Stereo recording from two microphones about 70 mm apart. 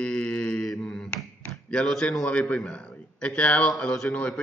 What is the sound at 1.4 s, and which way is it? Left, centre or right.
A man's voice, centre.